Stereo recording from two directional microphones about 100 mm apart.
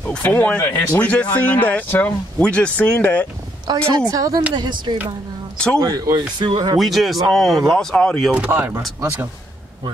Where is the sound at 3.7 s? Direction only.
45° right (ahead or behind).